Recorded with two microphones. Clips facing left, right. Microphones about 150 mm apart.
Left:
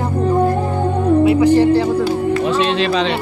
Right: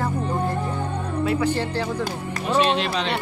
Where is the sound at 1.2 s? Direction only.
15° left (ahead or behind).